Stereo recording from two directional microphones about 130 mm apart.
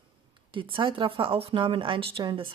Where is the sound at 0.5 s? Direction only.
40° right (ahead or behind).